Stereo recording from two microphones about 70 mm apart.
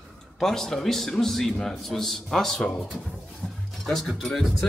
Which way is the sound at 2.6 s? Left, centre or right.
Left.